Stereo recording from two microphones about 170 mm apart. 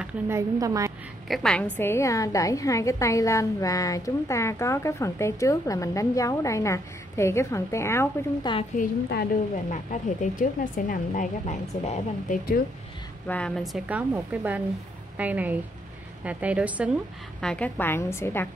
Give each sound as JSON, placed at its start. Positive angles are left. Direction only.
{"t": 0.0, "sound": "a woman's voice", "side_deg": -15}
{"t": 1.3, "sound": "a woman's voice", "side_deg": 5}
{"t": 8.8, "sound": "speech", "side_deg": 50}
{"t": 13.3, "sound": "a woman's voice", "side_deg": 0}
{"t": 17.4, "sound": "a woman's voice", "side_deg": 5}